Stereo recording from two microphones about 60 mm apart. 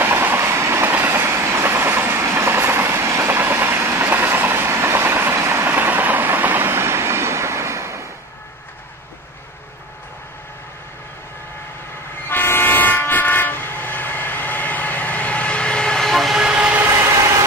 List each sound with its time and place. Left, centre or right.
0.0 s train: right
0.5 s train: right
5.4 s vehicle: right
5.7 s train: right
12.3 s train: left; by 16.4 s centre